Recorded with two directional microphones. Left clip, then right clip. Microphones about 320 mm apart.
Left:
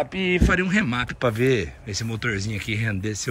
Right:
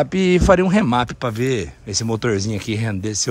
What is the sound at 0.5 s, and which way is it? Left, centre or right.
Speech, centre.